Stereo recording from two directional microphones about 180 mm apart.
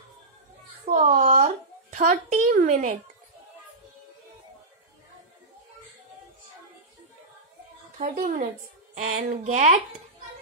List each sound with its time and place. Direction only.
0.8 s speech: 45° right (ahead or behind)
8.0 s a woman's voice: 45° right (ahead or behind)